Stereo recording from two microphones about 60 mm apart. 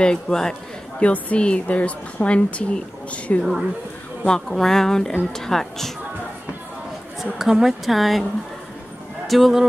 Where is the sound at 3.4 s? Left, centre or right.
Centre.